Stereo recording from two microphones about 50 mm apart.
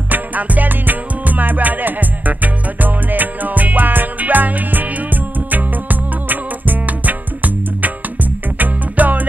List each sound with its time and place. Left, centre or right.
0.1 s music: right